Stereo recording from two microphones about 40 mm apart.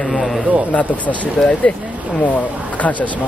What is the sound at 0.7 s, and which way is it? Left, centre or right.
Speech, left.